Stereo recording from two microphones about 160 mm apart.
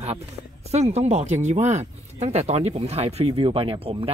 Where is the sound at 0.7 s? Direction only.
40° right (ahead or behind).